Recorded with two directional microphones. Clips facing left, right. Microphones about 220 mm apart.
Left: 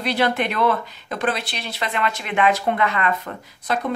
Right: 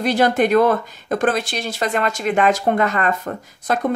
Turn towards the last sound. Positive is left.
turn(degrees=-45)  # may be behind; listen again after turning